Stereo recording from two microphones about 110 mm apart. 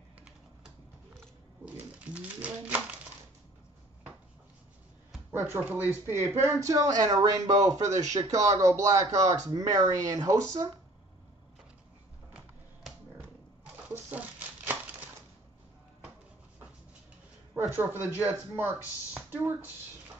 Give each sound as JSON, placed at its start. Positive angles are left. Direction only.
{"t": 2.1, "sound": "pigeon", "side_deg": -15}
{"t": 5.3, "sound": "speech", "side_deg": -20}
{"t": 14.7, "sound": "crumpling", "side_deg": -15}
{"t": 17.6, "sound": "speech", "side_deg": -20}